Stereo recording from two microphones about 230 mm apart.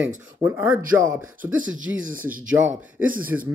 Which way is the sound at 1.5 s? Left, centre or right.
Right.